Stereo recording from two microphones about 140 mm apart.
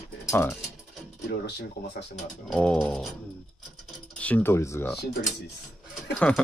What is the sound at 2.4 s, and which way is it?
Mechanisms, 5° left (ahead or behind).